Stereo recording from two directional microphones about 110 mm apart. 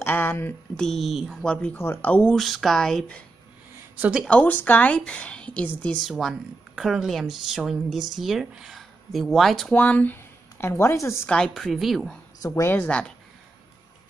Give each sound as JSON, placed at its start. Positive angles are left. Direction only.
{"t": 0.0, "sound": "speech", "side_deg": 20}
{"t": 0.7, "sound": "a woman's voice", "side_deg": 0}
{"t": 1.8, "sound": "a woman's voice", "side_deg": 20}
{"t": 2.3, "sound": "a woman's voice", "side_deg": 0}
{"t": 4.3, "sound": "a woman's voice", "side_deg": 15}
{"t": 6.0, "sound": "a woman's voice", "side_deg": 0}
{"t": 9.8, "sound": "speech", "side_deg": 15}
{"t": 11.2, "sound": "a woman's voice", "side_deg": 5}
{"t": 12.4, "sound": "speech", "side_deg": 30}
{"t": 12.6, "sound": "a woman's voice", "side_deg": 15}